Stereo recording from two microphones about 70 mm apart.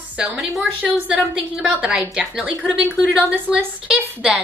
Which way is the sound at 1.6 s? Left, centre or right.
Centre.